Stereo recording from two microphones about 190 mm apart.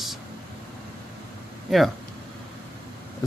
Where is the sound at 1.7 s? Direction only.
Centre (ahead or behind).